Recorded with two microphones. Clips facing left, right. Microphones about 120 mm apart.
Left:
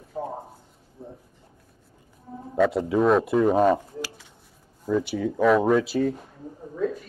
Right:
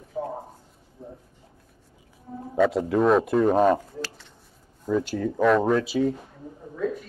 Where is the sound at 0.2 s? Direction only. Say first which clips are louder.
Right 1 dB; centre (ahead or behind).